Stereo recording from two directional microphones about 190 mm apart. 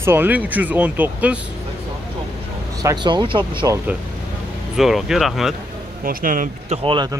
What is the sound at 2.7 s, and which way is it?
Speech, 20° right (ahead or behind).